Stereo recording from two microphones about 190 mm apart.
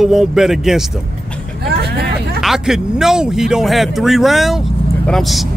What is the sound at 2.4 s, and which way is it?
Speech, centre (ahead or behind).